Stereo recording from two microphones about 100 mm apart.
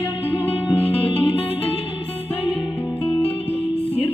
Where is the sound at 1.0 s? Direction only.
60° left (ahead or behind).